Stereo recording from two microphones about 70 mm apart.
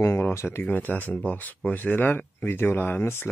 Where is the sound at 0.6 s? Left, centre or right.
Left.